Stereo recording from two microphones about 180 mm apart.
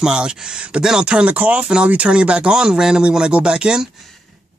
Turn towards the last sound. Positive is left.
turn(degrees=-5)  # may be behind; listen again after turning